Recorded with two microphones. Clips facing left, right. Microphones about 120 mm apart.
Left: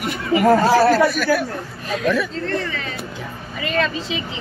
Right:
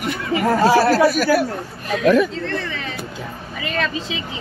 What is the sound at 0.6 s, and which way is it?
Speech, 5° right (ahead or behind).